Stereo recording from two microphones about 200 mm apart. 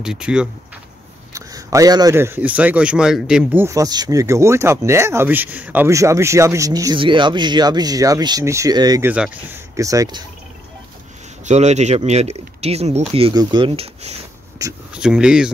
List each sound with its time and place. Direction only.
0.0 s speech: 5° right (ahead or behind)
1.3 s a man's voice: 15° right (ahead or behind)
9.1 s a man's voice: 5° right (ahead or behind)
11.4 s speech: 35° right (ahead or behind)
14.6 s a man's voice: 15° right (ahead or behind)
15.0 s speech: 5° right (ahead or behind)